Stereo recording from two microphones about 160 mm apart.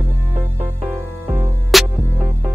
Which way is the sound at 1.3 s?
Centre (ahead or behind).